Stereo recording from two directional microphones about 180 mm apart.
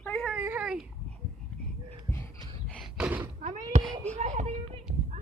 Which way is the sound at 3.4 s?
40° right (ahead or behind).